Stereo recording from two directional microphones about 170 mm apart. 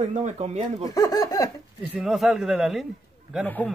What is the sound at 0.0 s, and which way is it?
Speech, 45° right (ahead or behind).